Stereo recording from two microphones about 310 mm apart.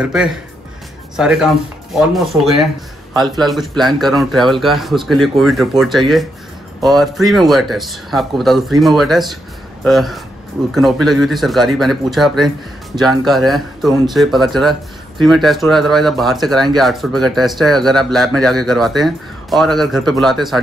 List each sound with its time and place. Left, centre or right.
0.0 s speech: centre